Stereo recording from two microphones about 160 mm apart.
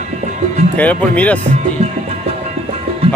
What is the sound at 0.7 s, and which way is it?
Speech, 10° left (ahead or behind).